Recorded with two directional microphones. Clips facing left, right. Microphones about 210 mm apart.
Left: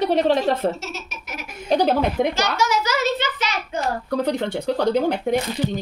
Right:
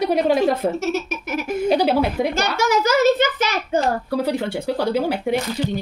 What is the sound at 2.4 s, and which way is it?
A child's voice, 55° right (ahead or behind).